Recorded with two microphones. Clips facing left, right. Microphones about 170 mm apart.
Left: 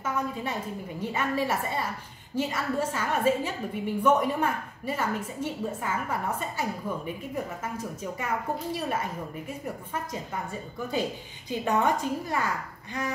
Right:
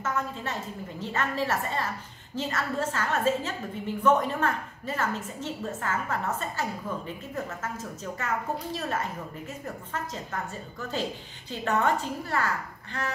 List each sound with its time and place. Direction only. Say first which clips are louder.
0.0 s a woman's voice: left 1 dB; 10° left (ahead or behind)